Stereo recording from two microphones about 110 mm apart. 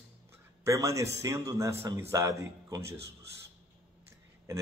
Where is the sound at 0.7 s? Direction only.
30° right (ahead or behind).